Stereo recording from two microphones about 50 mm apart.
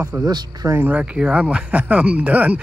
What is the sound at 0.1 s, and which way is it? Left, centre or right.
Speech, right.